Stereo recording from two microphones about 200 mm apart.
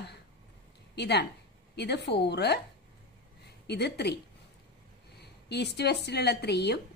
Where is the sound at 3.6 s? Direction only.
55° left (ahead or behind).